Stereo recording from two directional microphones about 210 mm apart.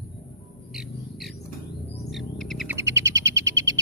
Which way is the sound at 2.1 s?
Centre (ahead or behind).